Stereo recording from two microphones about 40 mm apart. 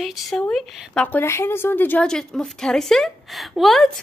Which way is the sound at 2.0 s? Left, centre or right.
Centre.